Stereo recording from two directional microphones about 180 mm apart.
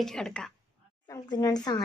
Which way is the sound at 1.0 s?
20° left (ahead or behind).